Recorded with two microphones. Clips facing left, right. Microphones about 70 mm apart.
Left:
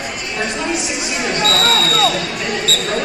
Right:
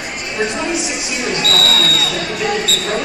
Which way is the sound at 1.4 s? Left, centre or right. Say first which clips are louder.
Left 2 dB; left.